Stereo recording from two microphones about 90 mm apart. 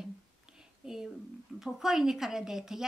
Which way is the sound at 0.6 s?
5° right (ahead or behind).